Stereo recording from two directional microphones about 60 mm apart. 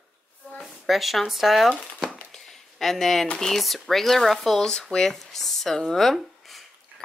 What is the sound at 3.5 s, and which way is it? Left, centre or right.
Speech, centre.